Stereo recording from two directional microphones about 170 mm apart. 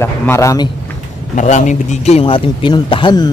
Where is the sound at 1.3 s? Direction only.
45° left (ahead or behind).